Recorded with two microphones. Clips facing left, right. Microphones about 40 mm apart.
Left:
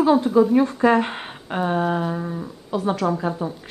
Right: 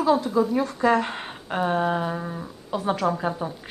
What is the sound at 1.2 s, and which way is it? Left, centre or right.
Speech, centre.